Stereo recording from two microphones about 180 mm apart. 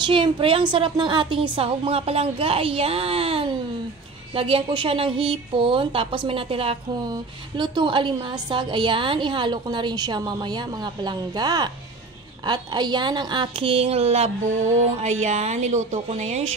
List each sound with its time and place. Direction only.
0.0 s a woman's voice: 25° right (ahead or behind)